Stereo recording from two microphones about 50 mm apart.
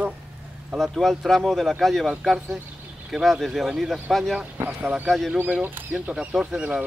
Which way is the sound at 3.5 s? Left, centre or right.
Centre.